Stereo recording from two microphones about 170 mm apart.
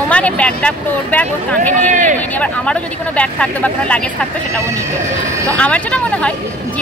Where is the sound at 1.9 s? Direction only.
50° right (ahead or behind).